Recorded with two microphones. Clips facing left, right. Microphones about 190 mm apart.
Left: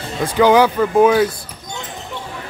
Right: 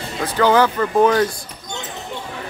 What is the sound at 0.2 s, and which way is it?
Speech, 10° left (ahead or behind).